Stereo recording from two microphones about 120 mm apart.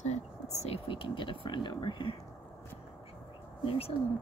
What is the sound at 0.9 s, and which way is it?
Speech, 45° left (ahead or behind).